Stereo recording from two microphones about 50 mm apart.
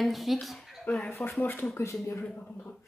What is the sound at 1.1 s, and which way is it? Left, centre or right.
Speech, left.